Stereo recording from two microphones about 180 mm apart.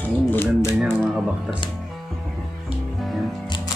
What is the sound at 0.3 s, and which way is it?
Speech, 15° left (ahead or behind).